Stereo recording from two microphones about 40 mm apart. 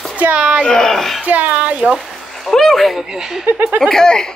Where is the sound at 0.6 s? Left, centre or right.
Centre.